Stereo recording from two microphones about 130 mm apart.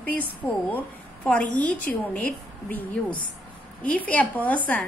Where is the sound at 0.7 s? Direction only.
10° left (ahead or behind).